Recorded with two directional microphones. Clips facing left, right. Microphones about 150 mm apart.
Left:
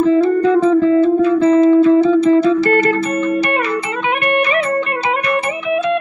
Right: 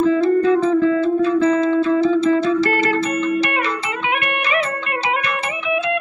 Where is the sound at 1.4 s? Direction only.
35° left (ahead or behind).